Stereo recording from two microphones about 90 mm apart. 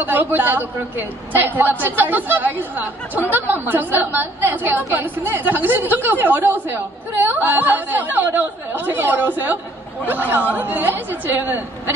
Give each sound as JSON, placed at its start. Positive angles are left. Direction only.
{"t": 0.0, "sound": "a woman's voice", "side_deg": -20}